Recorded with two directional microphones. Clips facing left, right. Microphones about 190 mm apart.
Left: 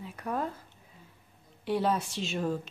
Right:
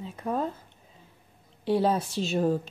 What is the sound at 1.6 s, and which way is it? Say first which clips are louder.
A woman's voice: right 4 dB; 30° right (ahead or behind).